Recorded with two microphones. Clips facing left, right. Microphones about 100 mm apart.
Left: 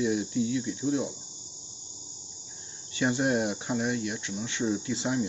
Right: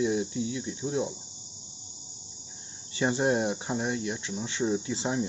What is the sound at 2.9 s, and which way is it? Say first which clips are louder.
Speech: even; 30° right (ahead or behind).